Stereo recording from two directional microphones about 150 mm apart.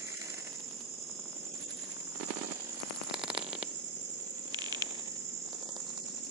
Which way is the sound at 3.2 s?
5° right (ahead or behind).